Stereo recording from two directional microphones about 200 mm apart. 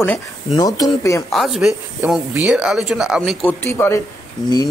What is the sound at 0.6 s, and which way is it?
Speech, 20° left (ahead or behind).